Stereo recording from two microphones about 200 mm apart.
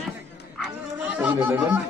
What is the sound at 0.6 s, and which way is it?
Dog, 5° right (ahead or behind).